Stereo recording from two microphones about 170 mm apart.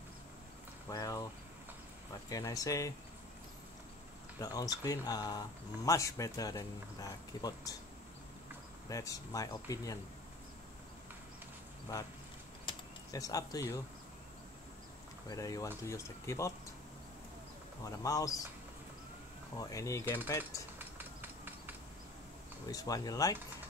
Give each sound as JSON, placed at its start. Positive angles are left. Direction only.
{"t": 0.8, "sound": "speech", "side_deg": 20}
{"t": 2.2, "sound": "speech", "side_deg": 20}
{"t": 4.4, "sound": "speech", "side_deg": 20}
{"t": 8.8, "sound": "speech", "side_deg": 20}
{"t": 11.9, "sound": "speech", "side_deg": 20}
{"t": 12.6, "sound": "a sound", "side_deg": 20}
{"t": 15.2, "sound": "speech", "side_deg": 20}
{"t": 17.8, "sound": "speech", "side_deg": 20}
{"t": 19.5, "sound": "speech", "side_deg": 20}
{"t": 21.0, "sound": "a sound", "side_deg": -10}
{"t": 22.7, "sound": "speech", "side_deg": 20}